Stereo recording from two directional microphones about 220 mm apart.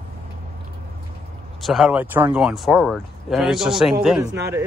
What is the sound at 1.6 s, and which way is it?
Speech, centre (ahead or behind).